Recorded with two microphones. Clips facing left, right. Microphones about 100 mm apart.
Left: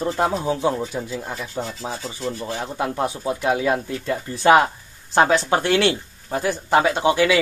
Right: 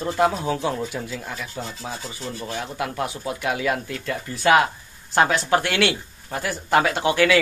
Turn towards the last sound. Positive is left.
turn(degrees=20)  # may be behind; listen again after turning